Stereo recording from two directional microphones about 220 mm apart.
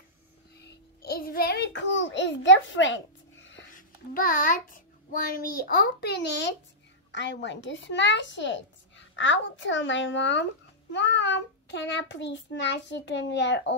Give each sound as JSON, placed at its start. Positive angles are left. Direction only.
{"t": 0.7, "sound": "a child's voice", "side_deg": 45}
{"t": 3.7, "sound": "a child's voice", "side_deg": 40}